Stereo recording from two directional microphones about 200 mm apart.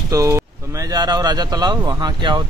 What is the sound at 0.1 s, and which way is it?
Speech, 15° right (ahead or behind).